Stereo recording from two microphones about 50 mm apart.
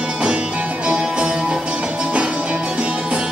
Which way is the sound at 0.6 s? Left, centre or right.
Centre.